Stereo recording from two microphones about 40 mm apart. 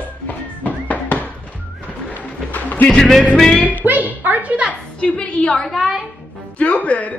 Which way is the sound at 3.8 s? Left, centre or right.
Right.